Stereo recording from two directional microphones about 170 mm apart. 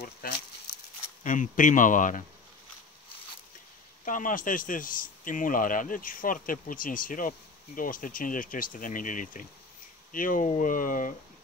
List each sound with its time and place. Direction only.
0.2 s speech: 60° left (ahead or behind)
1.2 s speech: 50° left (ahead or behind)
4.0 s speech: 50° left (ahead or behind)